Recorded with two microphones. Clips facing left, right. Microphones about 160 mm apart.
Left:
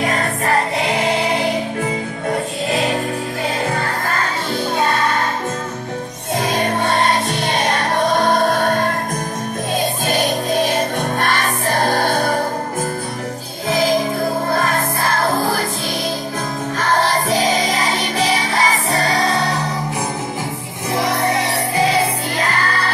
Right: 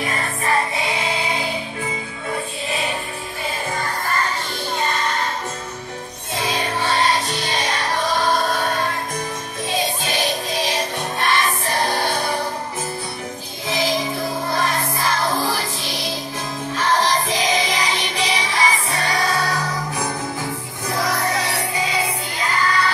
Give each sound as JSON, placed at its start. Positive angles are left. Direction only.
{"t": 0.0, "sound": "music", "side_deg": 50}
{"t": 3.7, "sound": "music", "side_deg": 55}
{"t": 6.3, "sound": "music", "side_deg": 50}
{"t": 13.7, "sound": "music", "side_deg": 45}
{"t": 16.7, "sound": "music", "side_deg": 45}
{"t": 20.9, "sound": "music", "side_deg": 25}
{"t": 21.7, "sound": "music", "side_deg": 60}